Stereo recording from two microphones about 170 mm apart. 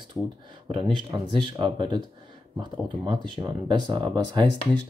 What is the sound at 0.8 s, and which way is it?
Speech, 30° right (ahead or behind).